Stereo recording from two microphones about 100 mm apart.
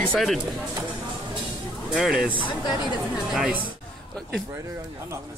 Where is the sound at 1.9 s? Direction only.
5° right (ahead or behind).